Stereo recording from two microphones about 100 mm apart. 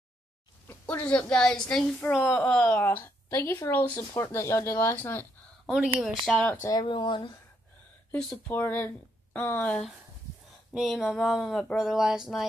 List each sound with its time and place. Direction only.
0.8 s a woman's voice: 15° left (ahead or behind)
2.8 s speech: 20° left (ahead or behind)
3.3 s speech: 30° left (ahead or behind)
3.7 s speech: 20° left (ahead or behind)
5.9 s speech: centre (ahead or behind)
6.3 s a woman's voice: 15° left (ahead or behind)
6.6 s speech: 40° left (ahead or behind)
6.9 s speech: 55° left (ahead or behind)
8.5 s speech: 20° left (ahead or behind)
10.7 s speech: centre (ahead or behind)